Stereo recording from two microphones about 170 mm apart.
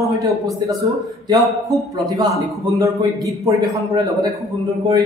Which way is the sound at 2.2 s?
20° right (ahead or behind).